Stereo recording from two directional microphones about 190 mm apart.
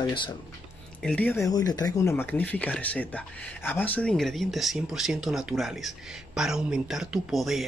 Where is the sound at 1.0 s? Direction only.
5° left (ahead or behind).